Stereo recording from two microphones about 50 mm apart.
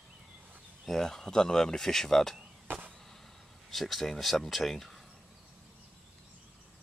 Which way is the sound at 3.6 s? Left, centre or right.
Centre.